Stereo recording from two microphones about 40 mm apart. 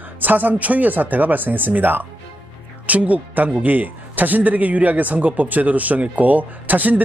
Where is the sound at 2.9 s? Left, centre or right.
Right.